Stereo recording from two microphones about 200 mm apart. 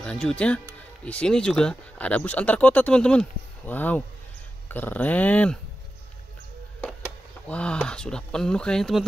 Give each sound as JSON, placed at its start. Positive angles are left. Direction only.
{"t": 0.0, "sound": "speech", "side_deg": 5}
{"t": 7.4, "sound": "speech", "side_deg": 5}